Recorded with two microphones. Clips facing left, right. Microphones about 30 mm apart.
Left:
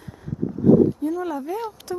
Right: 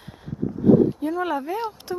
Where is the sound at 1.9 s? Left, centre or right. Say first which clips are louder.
Left 1 dB; centre.